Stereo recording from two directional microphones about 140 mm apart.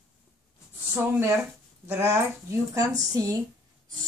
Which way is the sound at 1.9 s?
15° right (ahead or behind).